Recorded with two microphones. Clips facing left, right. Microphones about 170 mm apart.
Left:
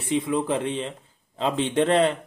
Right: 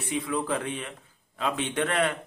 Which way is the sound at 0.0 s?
25° left (ahead or behind).